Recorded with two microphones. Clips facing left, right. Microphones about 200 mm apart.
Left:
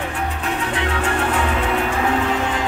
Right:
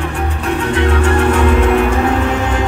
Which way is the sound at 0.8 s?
70° right (ahead or behind).